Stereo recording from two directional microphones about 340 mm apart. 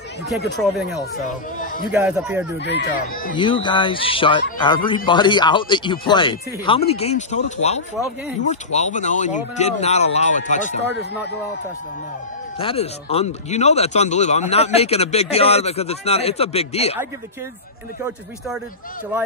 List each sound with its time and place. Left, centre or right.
0.6 s speech: centre
2.6 s speech: left
3.3 s a man's voice: centre
12.5 s a man's voice: centre